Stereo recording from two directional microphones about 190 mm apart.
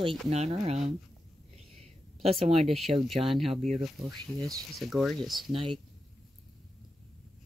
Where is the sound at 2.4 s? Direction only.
35° right (ahead or behind).